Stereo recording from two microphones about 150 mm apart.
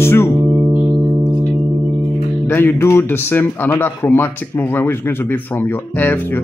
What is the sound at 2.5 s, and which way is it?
A man's voice, 15° left (ahead or behind).